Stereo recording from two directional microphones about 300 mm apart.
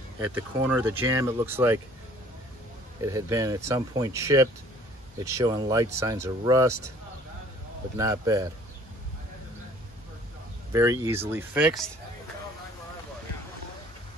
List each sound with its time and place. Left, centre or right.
0.2 s speech: centre
3.0 s speech: centre
8.0 s speech: centre
10.7 s speech: centre